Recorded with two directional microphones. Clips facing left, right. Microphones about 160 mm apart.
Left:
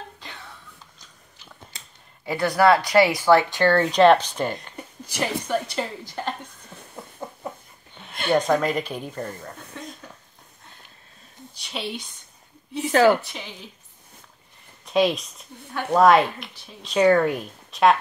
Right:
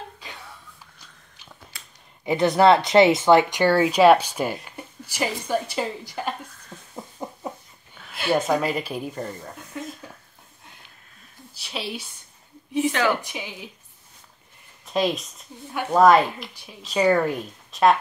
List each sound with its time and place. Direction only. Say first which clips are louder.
2.2 s speech: right 2 dB; 20° right (ahead or behind)
6.7 s a sound: right 3 dB; 15° right (ahead or behind)
8.1 s speech: left 1 dB; 5° right (ahead or behind)
11.5 s a woman's voice: even; 5° right (ahead or behind)
13.2 s speech: right 3 dB; 15° right (ahead or behind)
14.9 s a woman's voice: left 3 dB; centre (ahead or behind)